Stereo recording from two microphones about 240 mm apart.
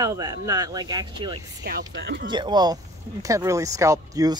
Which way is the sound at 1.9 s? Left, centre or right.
Right.